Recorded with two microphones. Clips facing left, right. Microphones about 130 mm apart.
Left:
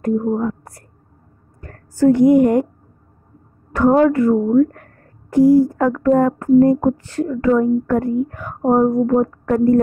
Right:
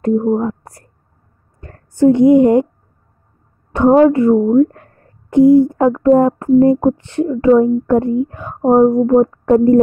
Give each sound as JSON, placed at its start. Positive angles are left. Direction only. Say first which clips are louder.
{"t": 0.2, "sound": "a woman's voice", "louder": "right 4 dB", "side_deg": -25}
{"t": 3.7, "sound": "a woman's voice", "louder": "right 4 dB", "side_deg": -25}